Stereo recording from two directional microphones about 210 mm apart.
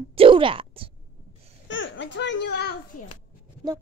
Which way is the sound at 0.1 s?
25° right (ahead or behind).